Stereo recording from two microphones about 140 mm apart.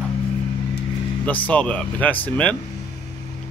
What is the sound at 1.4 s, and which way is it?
A man's voice, 10° left (ahead or behind).